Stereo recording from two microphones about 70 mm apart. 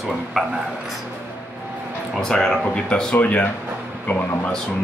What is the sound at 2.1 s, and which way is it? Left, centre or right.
Speech, centre.